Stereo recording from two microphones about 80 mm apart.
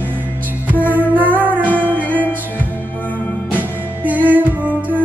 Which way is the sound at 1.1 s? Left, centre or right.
Right.